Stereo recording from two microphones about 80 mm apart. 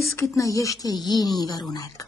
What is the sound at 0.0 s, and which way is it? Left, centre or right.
Speech, left.